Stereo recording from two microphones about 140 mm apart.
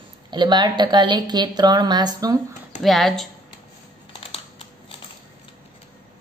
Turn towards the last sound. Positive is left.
turn(degrees=35)  # may be behind; listen again after turning